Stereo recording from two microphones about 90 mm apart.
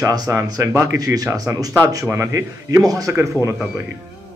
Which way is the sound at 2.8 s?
40° right (ahead or behind).